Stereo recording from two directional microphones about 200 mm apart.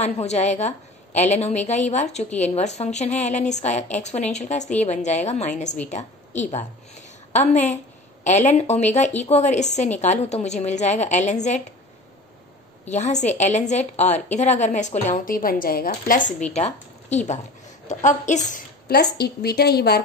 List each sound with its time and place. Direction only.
0.0 s a woman's voice: 35° left (ahead or behind)
12.8 s a woman's voice: 35° left (ahead or behind)
18.5 s speech: 50° left (ahead or behind)